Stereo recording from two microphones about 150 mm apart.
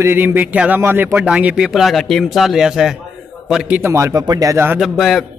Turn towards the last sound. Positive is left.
turn(degrees=0)  # may be behind; listen again after turning